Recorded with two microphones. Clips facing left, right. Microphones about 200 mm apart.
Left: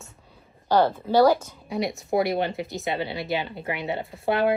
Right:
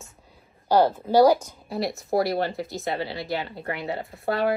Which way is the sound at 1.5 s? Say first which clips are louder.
Left 1 dB; centre (ahead or behind).